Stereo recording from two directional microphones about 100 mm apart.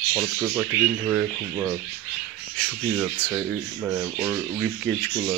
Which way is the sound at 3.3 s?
10° right (ahead or behind).